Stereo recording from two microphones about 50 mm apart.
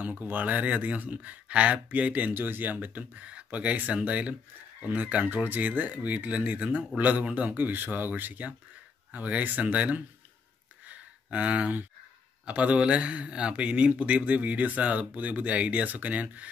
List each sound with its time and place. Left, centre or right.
0.0 s speech: right
2.3 s speech: right
10.9 s a sound: right
12.4 s speech: right